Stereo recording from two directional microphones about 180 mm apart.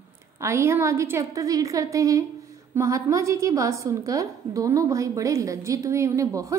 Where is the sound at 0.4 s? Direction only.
15° right (ahead or behind).